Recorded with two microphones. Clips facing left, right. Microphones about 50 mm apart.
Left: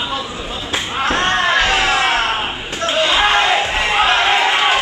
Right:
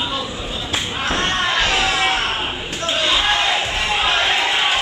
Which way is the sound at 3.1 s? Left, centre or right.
Left.